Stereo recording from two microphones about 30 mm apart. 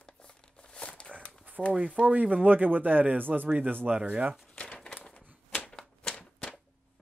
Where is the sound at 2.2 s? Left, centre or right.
Right.